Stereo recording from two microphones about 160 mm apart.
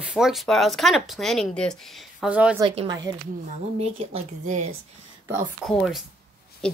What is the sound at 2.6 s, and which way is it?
Speech, 35° right (ahead or behind).